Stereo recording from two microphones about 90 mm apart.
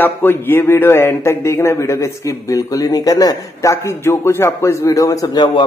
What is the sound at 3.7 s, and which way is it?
Speech, 30° left (ahead or behind).